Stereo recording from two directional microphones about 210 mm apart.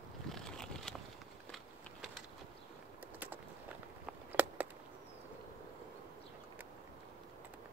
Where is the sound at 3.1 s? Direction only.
10° right (ahead or behind).